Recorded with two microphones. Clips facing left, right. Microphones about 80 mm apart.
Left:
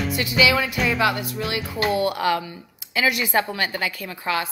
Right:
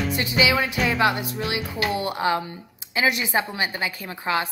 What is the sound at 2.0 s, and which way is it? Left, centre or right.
A woman's voice, right.